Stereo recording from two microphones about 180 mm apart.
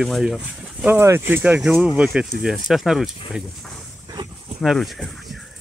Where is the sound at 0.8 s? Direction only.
15° right (ahead or behind).